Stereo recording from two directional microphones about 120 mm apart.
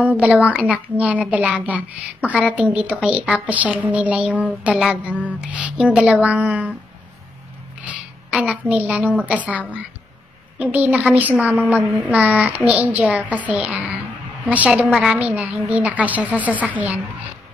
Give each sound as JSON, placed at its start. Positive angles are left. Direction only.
{"t": 0.0, "sound": "a woman's voice", "side_deg": -10}
{"t": 7.8, "sound": "a woman's voice", "side_deg": -10}